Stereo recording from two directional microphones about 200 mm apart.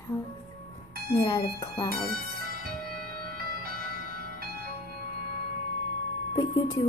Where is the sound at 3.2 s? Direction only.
50° right (ahead or behind).